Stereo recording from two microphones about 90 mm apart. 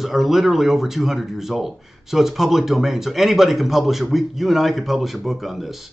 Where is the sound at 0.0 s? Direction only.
Centre (ahead or behind).